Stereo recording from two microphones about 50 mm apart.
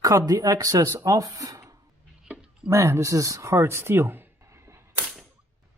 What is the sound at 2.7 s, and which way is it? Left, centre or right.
Speech, right.